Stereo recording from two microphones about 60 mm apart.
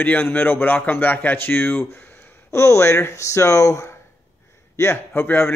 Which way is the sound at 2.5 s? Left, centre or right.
Left.